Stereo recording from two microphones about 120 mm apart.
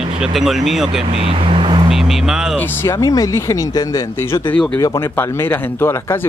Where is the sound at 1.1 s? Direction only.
50° right (ahead or behind).